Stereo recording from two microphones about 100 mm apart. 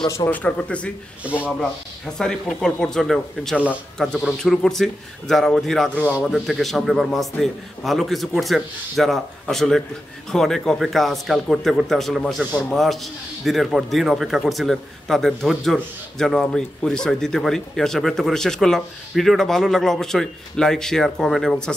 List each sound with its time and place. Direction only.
0.3 s speech: 15° left (ahead or behind)
1.2 s a man's voice: 15° right (ahead or behind)
1.6 s speech: 5° left (ahead or behind)
5.9 s a man's voice: 15° right (ahead or behind)
6.2 s speech: centre (ahead or behind)